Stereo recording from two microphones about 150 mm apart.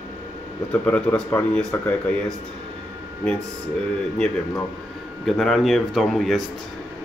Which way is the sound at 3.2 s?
5° left (ahead or behind).